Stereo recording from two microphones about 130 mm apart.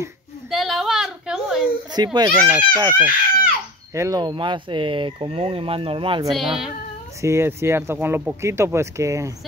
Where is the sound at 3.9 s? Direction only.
25° right (ahead or behind); by 6.2 s 45° right (ahead or behind).